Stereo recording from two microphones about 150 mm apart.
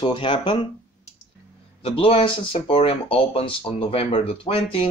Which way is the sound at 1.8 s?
35° left (ahead or behind).